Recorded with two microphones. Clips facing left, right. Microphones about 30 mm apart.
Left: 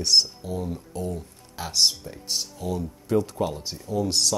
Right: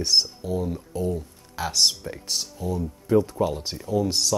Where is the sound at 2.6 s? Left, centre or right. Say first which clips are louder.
Right 2 dB; left.